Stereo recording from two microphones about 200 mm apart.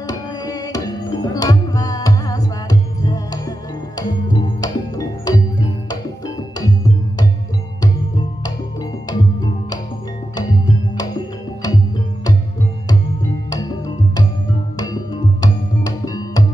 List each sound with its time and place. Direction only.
0.0 s music: 20° left (ahead or behind)
9.1 s music: 20° left (ahead or behind)
13.5 s music: 20° left (ahead or behind)
15.4 s music: 20° left (ahead or behind)